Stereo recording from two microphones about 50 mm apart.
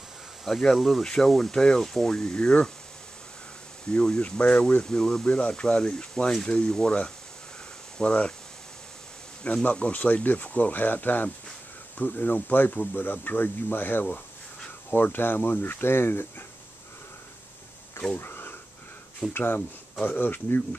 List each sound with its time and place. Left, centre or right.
0.5 s speech: centre
3.9 s speech: left
4.8 s speech: centre
5.2 s speech: left
9.5 s speech: left
18.2 s dog: left
19.3 s speech: left